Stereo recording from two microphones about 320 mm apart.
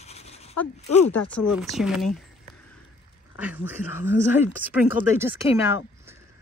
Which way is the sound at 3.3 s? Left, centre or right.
Centre.